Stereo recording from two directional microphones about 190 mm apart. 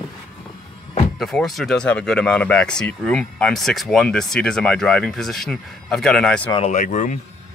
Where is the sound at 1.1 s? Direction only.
Centre (ahead or behind).